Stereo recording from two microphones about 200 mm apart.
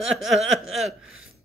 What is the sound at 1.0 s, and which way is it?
Gasp, 85° right.